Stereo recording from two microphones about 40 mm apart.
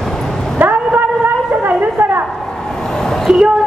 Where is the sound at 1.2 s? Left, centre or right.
Right.